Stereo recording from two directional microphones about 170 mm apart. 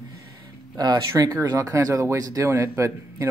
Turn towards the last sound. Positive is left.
turn(degrees=-15)  # may be behind; listen again after turning